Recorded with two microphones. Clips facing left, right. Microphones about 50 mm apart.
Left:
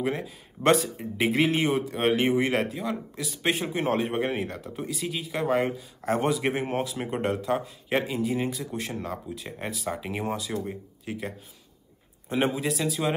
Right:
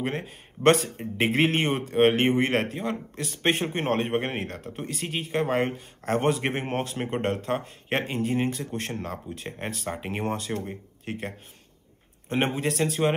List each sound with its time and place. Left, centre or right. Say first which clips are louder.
0.0 s speech: left 1 dB; right